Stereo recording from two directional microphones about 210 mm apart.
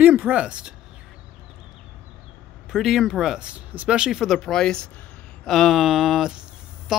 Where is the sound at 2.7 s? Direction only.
Centre (ahead or behind).